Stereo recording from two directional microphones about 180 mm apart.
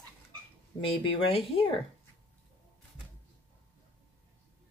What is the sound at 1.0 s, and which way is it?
Speech, 30° left (ahead or behind).